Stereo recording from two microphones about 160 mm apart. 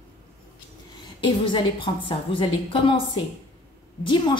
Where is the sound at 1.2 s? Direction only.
30° left (ahead or behind).